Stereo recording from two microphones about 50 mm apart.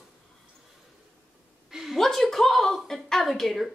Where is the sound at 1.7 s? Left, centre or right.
Centre.